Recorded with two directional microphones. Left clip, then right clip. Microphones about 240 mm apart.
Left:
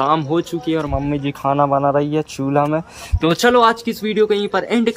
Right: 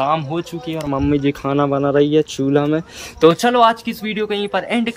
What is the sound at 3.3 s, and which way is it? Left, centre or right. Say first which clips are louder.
Speech: left 1 dB; centre.